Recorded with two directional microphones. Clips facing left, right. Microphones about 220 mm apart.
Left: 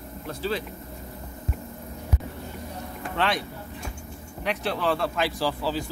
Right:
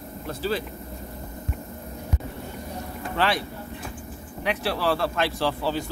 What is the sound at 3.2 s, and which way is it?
A man's voice, 5° right (ahead or behind).